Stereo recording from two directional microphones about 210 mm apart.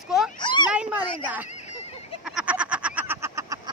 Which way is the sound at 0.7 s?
5° right (ahead or behind).